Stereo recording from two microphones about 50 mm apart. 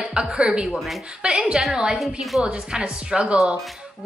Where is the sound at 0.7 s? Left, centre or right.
Centre.